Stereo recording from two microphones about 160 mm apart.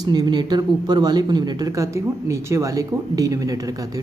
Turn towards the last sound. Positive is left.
turn(degrees=-20)  # may be behind; listen again after turning